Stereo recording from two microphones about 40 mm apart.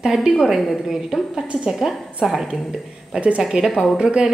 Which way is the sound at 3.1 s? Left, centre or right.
Right.